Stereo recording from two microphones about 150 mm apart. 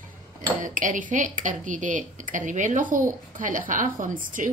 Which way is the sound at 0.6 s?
60° right (ahead or behind).